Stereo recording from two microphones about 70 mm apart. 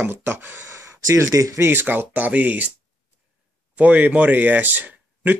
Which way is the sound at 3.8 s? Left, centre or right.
Right.